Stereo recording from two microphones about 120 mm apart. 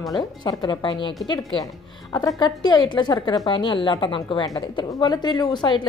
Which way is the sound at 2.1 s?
35° left (ahead or behind).